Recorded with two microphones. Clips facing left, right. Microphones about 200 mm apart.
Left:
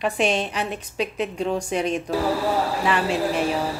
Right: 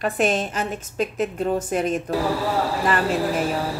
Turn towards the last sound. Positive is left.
turn(degrees=0)  # may be behind; listen again after turning